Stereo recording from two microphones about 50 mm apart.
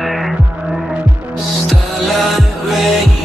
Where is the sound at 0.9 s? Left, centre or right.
Right.